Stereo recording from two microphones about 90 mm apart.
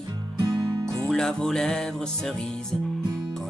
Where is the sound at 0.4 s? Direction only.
50° right (ahead or behind).